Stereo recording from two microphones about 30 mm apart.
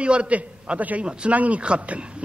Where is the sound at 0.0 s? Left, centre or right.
Right.